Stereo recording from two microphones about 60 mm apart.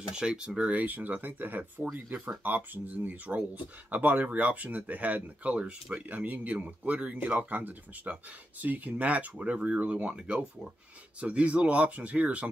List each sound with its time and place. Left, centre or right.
0.1 s speech: centre